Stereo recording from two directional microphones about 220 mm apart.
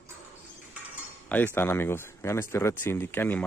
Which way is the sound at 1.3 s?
10° left (ahead or behind).